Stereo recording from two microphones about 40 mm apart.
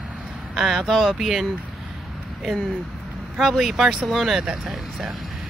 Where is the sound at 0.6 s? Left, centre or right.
Centre.